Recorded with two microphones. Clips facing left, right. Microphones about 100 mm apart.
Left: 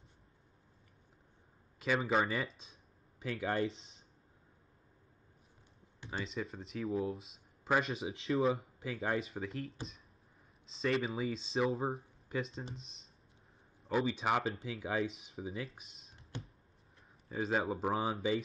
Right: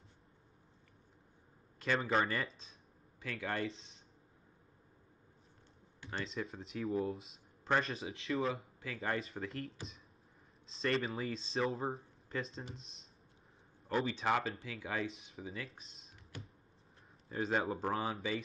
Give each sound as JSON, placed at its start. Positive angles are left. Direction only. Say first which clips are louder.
{"t": 1.8, "sound": "speech", "louder": "left 1 dB", "side_deg": 5}
{"t": 3.2, "sound": "speech", "louder": "left 4 dB", "side_deg": 15}
{"t": 6.0, "sound": "speech", "louder": "left 1 dB", "side_deg": 0}
{"t": 8.3, "sound": "speech", "louder": "left 3 dB", "side_deg": 25}
{"t": 8.8, "sound": "speech", "louder": "left 3 dB", "side_deg": 15}
{"t": 9.2, "sound": "speech", "louder": "left 2 dB", "side_deg": 0}
{"t": 14.4, "sound": "speech", "louder": "left 3 dB", "side_deg": 25}
{"t": 14.8, "sound": "speech", "louder": "left 3 dB", "side_deg": 15}
{"t": 16.3, "sound": "a sound", "louder": "left 4 dB", "side_deg": 25}
{"t": 17.3, "sound": "speech", "louder": "left 1 dB", "side_deg": 0}